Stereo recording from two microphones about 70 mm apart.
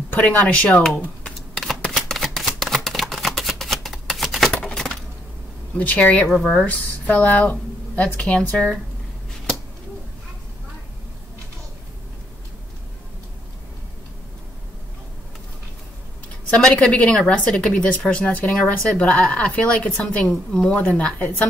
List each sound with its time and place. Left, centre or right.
0.1 s speech: left
1.6 s a sound: centre
5.8 s speech: left
6.2 s speech: centre
6.6 s speech: left
7.5 s a sound: centre
8.2 s a woman's voice: centre
16.4 s a woman's voice: centre